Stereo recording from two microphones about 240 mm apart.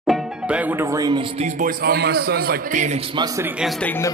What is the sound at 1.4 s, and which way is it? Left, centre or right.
Music, right.